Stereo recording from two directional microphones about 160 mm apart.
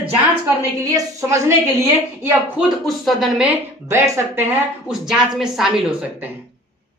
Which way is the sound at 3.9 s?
15° right (ahead or behind).